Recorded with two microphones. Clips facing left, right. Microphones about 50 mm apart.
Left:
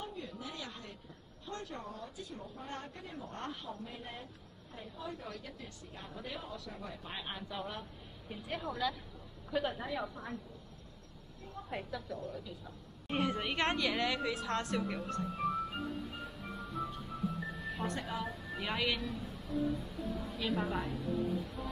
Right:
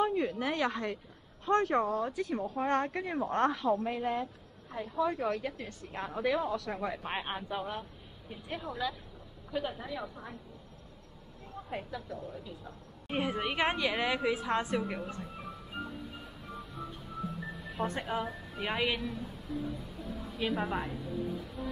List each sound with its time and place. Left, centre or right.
0.0 s speech: right
4.7 s speech: right
7.0 s speech: right
7.2 s speech: right
7.5 s a woman's voice: centre
11.7 s a woman's voice: centre
16.5 s music: centre
17.8 s speech: right
19.5 s a woman's voice: centre
20.1 s a woman's voice: centre
21.1 s a woman's voice: centre